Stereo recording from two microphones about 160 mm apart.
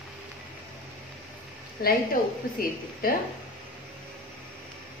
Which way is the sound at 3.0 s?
65° left (ahead or behind).